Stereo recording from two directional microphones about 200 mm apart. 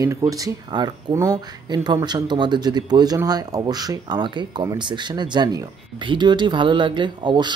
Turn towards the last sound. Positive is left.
turn(degrees=-25)  # may be behind; listen again after turning